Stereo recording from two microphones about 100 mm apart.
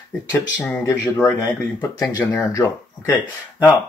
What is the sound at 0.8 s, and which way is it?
Speech, 25° left (ahead or behind).